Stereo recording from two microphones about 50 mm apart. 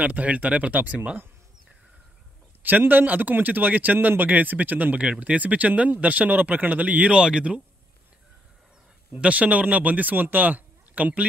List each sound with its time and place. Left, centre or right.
0.0 s speech: right
2.8 s speech: right
5.0 s speech: right
7.1 s speech: centre
9.1 s speech: right